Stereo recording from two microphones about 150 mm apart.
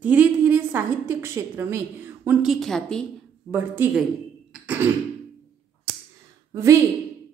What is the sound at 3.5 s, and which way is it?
Speech, 10° right (ahead or behind).